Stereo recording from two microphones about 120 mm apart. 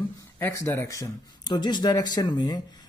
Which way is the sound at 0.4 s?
20° left (ahead or behind).